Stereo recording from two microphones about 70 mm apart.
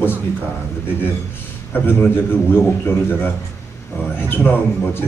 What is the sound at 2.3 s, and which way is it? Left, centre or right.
A man's voice, left.